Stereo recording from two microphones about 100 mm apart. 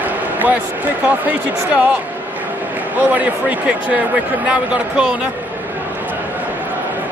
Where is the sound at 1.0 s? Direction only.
15° right (ahead or behind).